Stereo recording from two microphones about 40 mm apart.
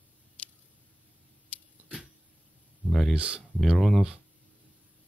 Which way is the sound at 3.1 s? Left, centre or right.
Right.